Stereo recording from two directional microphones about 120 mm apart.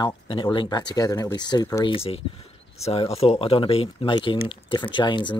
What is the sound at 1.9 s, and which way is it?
Speech, 55° left (ahead or behind).